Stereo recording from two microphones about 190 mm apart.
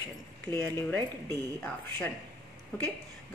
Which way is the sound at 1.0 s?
20° right (ahead or behind).